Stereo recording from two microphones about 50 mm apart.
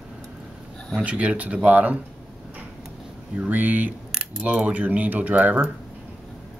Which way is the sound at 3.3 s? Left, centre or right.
Right.